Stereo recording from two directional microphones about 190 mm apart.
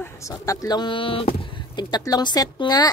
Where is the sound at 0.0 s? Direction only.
15° left (ahead or behind).